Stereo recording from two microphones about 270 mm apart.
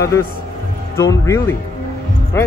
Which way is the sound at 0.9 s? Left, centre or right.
Centre.